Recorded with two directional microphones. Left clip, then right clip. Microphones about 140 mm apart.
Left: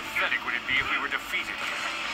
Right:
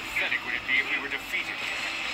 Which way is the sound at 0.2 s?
45° left (ahead or behind).